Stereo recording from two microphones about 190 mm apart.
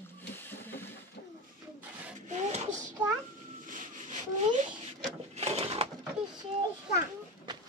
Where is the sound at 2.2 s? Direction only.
40° right (ahead or behind).